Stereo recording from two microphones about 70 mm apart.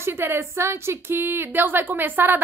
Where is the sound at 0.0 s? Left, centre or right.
Right.